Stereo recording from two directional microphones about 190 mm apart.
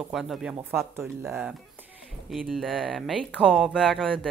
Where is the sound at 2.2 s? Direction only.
Centre (ahead or behind).